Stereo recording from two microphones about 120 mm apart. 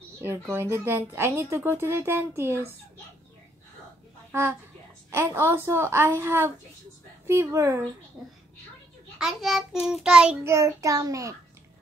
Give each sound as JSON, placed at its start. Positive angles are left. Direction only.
{"t": 0.2, "sound": "a woman's voice", "side_deg": -20}
{"t": 4.3, "sound": "a woman's voice", "side_deg": -20}
{"t": 8.2, "sound": "a child's voice", "side_deg": 0}
{"t": 10.4, "sound": "a woman's voice", "side_deg": -25}